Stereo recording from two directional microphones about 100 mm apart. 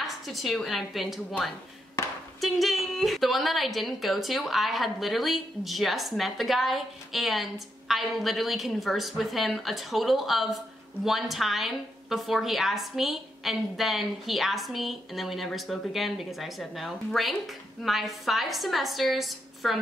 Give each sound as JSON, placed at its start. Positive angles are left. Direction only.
{"t": 0.0, "sound": "a woman's voice", "side_deg": 0}
{"t": 2.4, "sound": "a woman's voice", "side_deg": 0}